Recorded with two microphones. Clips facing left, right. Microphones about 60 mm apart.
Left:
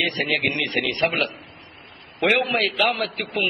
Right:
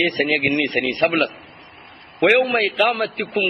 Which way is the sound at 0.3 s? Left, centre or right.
Right.